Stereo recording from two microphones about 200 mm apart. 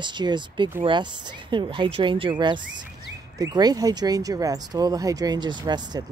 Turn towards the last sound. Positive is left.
turn(degrees=-20)  # may be behind; listen again after turning